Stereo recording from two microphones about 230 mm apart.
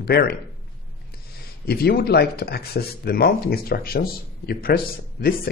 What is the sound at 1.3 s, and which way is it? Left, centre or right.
Speech, left.